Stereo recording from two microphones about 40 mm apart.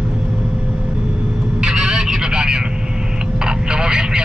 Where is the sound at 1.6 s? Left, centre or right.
Right.